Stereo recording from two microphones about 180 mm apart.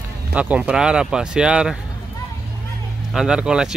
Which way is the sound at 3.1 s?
5° right (ahead or behind).